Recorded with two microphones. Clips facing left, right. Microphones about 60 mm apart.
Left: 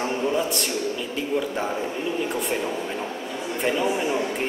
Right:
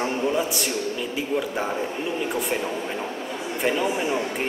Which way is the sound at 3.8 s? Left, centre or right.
Centre.